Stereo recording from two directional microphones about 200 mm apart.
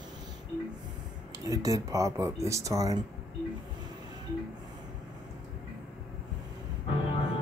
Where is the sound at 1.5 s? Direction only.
15° right (ahead or behind).